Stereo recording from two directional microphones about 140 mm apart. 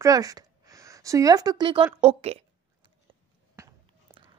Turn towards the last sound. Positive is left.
turn(degrees=-20)  # may be behind; listen again after turning